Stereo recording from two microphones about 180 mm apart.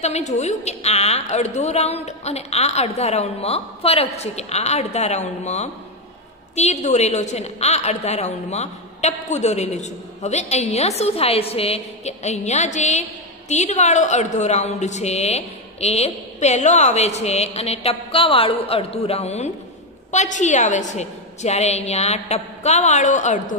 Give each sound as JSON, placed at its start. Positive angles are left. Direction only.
{"t": 0.0, "sound": "a woman's voice", "side_deg": 40}